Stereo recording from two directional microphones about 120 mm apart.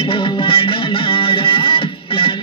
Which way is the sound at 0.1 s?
50° left (ahead or behind).